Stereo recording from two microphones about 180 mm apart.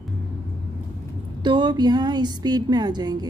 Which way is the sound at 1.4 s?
25° right (ahead or behind).